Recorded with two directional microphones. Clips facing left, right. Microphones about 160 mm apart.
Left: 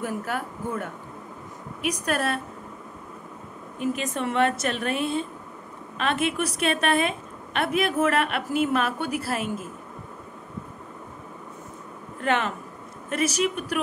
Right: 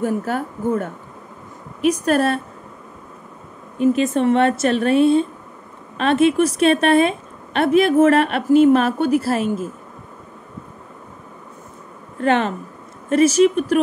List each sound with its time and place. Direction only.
0.0 s a woman's voice: 30° right (ahead or behind)
3.8 s a woman's voice: 30° right (ahead or behind)
12.2 s a woman's voice: 30° right (ahead or behind)